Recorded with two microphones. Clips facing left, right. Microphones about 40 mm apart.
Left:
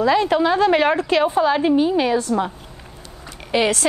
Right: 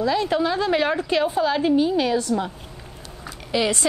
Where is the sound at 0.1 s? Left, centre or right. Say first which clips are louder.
Left 5 dB; left.